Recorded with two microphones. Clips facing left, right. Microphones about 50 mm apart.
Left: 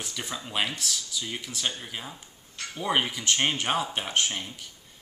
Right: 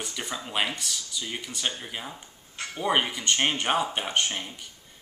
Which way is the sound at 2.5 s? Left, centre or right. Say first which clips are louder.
Right 2 dB; right.